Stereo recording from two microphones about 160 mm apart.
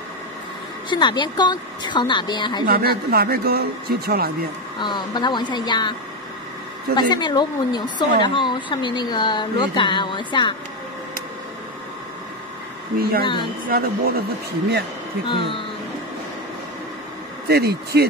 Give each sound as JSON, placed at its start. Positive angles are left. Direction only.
{"t": 0.8, "sound": "a woman's voice", "side_deg": 30}
{"t": 2.6, "sound": "speech", "side_deg": -75}
{"t": 4.7, "sound": "a woman's voice", "side_deg": 30}
{"t": 7.0, "sound": "a woman's voice", "side_deg": 25}
{"t": 13.2, "sound": "a woman's voice", "side_deg": 30}
{"t": 13.7, "sound": "speech", "side_deg": -70}
{"t": 15.2, "sound": "speech", "side_deg": 30}
{"t": 17.5, "sound": "speech", "side_deg": -80}